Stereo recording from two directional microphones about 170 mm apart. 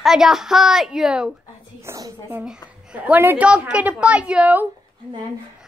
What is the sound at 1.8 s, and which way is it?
A woman's voice, 15° right (ahead or behind).